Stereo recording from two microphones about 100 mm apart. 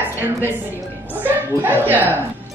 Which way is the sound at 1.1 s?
20° right (ahead or behind).